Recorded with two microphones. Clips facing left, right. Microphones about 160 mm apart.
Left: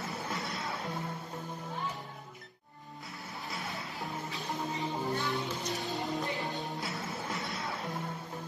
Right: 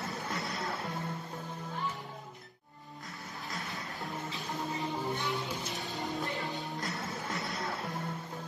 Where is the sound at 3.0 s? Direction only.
Centre (ahead or behind).